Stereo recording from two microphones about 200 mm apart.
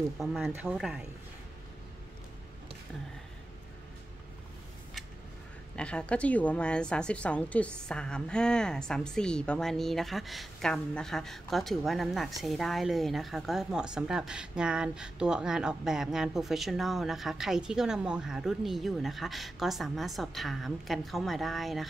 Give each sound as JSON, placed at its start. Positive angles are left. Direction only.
{"t": 0.2, "sound": "a woman's voice", "side_deg": 0}
{"t": 5.8, "sound": "a woman's voice", "side_deg": 5}